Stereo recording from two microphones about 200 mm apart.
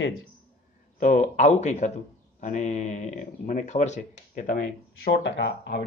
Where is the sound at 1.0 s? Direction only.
35° left (ahead or behind); by 5.8 s 55° left (ahead or behind).